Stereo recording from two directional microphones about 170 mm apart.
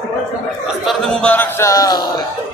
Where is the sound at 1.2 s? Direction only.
10° left (ahead or behind).